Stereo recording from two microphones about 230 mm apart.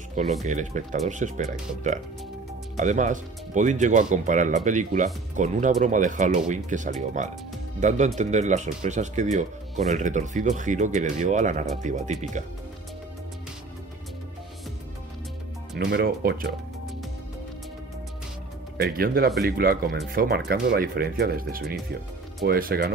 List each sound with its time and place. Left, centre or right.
0.5 s speech: right
2.8 s speech: right
15.8 s speech: right
18.8 s speech: right